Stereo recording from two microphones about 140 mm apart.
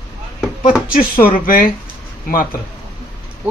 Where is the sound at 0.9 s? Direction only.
90° left.